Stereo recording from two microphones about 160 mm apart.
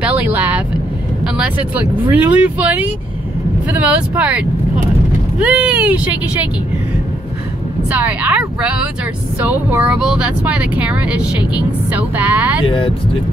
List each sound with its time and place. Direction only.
0.0 s vehicle: 10° right (ahead or behind)
1.2 s speech: 5° right (ahead or behind)
7.9 s speech: 10° right (ahead or behind)
12.6 s speech: 35° left (ahead or behind)